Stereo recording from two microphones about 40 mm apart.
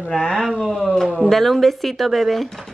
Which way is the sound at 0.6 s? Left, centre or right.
Centre.